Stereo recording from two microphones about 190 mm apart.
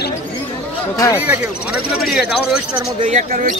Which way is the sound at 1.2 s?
5° right (ahead or behind).